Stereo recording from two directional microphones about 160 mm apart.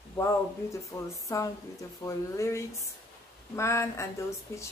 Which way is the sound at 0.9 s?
15° left (ahead or behind).